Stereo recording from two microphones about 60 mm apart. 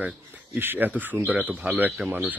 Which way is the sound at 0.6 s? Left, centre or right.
Right.